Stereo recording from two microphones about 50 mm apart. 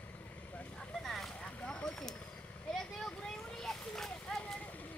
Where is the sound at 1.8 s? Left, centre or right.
Centre.